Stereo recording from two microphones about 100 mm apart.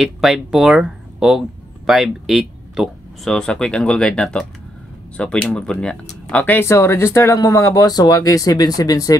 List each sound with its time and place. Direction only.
0.0 s speech: 5° right (ahead or behind); by 6.7 s 20° left (ahead or behind)
6.7 s speech: 30° left (ahead or behind)